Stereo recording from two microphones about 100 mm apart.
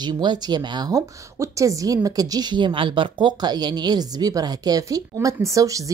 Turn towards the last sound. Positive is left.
turn(degrees=-35)  # may be behind; listen again after turning